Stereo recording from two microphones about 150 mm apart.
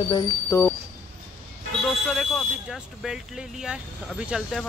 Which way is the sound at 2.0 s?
Centre (ahead or behind).